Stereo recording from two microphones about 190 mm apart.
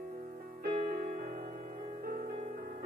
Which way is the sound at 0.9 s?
45° right (ahead or behind).